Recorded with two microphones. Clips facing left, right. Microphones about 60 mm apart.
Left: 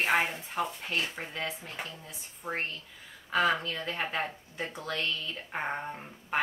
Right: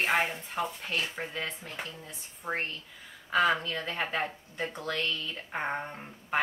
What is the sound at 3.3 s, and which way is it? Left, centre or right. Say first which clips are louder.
Speech: right 1 dB; centre.